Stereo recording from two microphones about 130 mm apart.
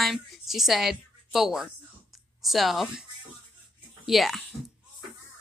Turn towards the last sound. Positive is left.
turn(degrees=0)  # may be behind; listen again after turning